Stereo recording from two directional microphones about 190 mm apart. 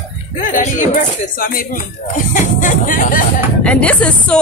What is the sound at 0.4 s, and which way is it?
Speech, 45° left (ahead or behind).